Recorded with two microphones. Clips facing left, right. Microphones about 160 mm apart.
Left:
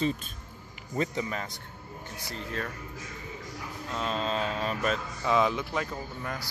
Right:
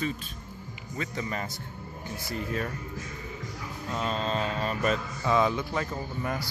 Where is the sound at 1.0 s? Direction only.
40° left (ahead or behind).